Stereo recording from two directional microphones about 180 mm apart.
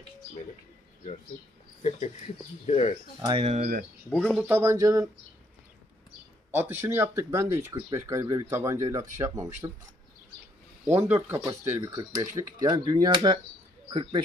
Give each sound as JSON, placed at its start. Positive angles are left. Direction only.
{"t": 1.8, "sound": "speech", "side_deg": 35}
{"t": 3.2, "sound": "speech", "side_deg": -25}
{"t": 4.1, "sound": "speech", "side_deg": 5}
{"t": 4.5, "sound": "speech", "side_deg": -15}
{"t": 6.5, "sound": "speech", "side_deg": -10}
{"t": 10.9, "sound": "speech", "side_deg": -15}